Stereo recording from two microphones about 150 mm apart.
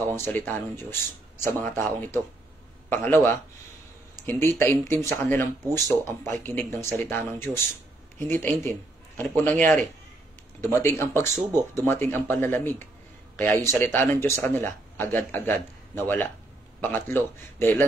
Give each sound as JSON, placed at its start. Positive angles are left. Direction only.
{"t": 0.0, "sound": "a man's voice", "side_deg": 15}